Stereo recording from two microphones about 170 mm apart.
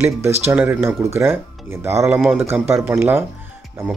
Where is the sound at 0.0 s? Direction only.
15° right (ahead or behind).